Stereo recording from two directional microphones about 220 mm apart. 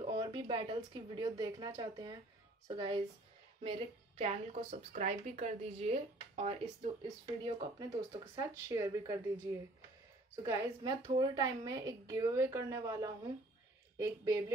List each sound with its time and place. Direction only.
0.0 s speech: 20° right (ahead or behind)
4.2 s a woman's voice: 30° right (ahead or behind); by 14.5 s 15° right (ahead or behind)